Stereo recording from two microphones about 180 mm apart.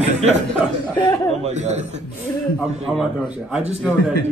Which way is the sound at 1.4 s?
40° right (ahead or behind).